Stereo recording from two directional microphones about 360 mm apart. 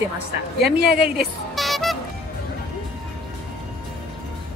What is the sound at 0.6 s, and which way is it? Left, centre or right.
Speech, right.